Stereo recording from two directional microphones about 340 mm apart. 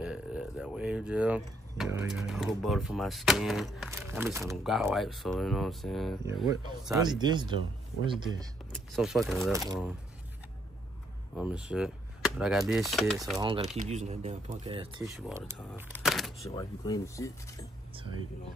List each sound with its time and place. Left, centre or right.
0.0 s speech: centre
8.7 s speech: centre
11.3 s speech: centre
13.4 s speech: centre
15.0 s speech: centre
16.5 s speech: centre